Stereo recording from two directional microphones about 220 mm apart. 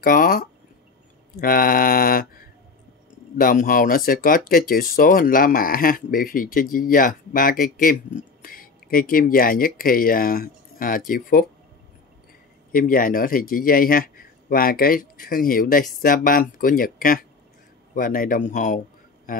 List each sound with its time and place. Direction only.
0.0 s speech: 40° left (ahead or behind)
12.7 s speech: 40° left (ahead or behind)